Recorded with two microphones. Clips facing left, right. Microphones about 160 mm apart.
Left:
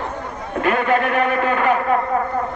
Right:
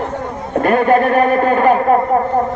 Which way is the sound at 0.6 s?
40° right (ahead or behind).